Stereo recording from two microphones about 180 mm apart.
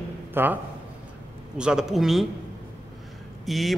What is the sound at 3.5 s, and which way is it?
Speech, centre (ahead or behind).